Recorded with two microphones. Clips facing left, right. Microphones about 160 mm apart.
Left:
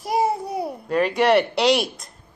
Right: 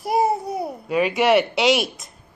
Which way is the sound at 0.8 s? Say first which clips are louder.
Even; centre (ahead or behind).